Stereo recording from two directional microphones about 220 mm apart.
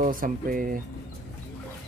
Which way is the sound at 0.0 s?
40° right (ahead or behind).